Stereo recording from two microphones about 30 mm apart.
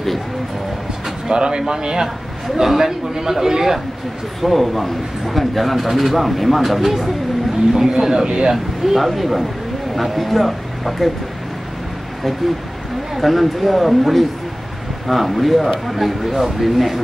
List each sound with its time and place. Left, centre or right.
1.3 s a man's voice: right
2.6 s a man's voice: centre
4.4 s a man's voice: centre
8.9 s speech: centre
13.1 s a man's voice: centre